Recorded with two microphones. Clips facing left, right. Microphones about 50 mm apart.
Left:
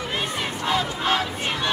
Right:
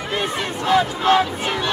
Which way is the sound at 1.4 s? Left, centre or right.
Centre.